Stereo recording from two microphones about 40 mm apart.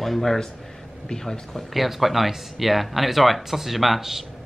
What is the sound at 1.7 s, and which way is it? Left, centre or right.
Speech, centre.